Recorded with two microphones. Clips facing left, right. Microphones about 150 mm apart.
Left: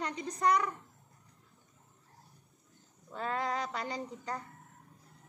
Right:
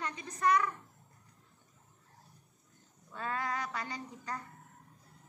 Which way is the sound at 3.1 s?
20° left (ahead or behind).